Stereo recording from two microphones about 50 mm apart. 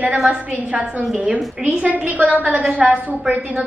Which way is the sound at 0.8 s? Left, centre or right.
Right.